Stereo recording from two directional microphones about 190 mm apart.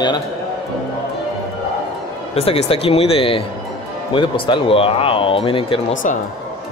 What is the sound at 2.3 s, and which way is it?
Speech, 30° left (ahead or behind).